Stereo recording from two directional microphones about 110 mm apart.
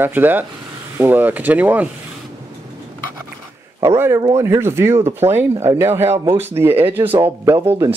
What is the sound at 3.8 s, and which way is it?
Speech, 25° right (ahead or behind).